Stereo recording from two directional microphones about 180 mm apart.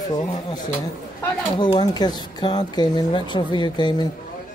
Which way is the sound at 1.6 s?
25° left (ahead or behind).